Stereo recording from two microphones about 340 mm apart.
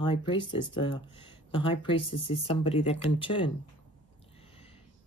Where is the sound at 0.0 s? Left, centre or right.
Centre.